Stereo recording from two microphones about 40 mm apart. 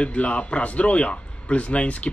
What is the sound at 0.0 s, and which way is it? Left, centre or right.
Speech, left.